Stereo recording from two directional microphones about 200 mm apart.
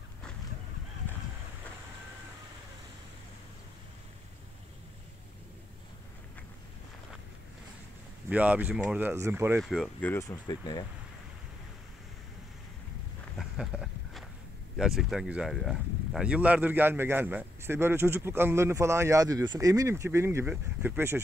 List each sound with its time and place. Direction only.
8.3 s speech: 5° right (ahead or behind)
9.6 s speech: centre (ahead or behind)
10.1 s speech: 20° left (ahead or behind)
13.4 s a sound: centre (ahead or behind)
14.8 s speech: centre (ahead or behind)